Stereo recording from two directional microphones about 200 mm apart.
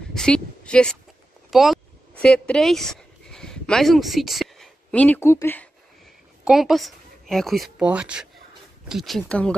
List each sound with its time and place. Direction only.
0.1 s a woman's voice: 5° left (ahead or behind)
1.5 s a sound: centre (ahead or behind)
6.4 s a woman's voice: centre (ahead or behind)